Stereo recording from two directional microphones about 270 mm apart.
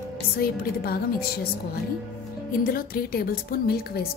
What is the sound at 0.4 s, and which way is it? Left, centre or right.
Speech, left.